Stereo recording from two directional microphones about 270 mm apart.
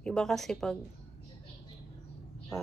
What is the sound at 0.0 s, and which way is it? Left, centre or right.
Speech, centre.